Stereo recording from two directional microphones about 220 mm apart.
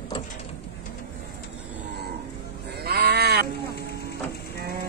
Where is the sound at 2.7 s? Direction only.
45° right (ahead or behind).